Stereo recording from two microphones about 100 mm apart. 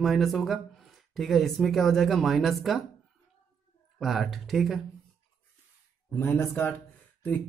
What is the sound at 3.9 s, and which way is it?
Speech, centre (ahead or behind).